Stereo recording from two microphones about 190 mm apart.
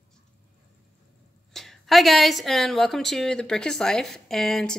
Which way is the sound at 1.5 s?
Centre (ahead or behind).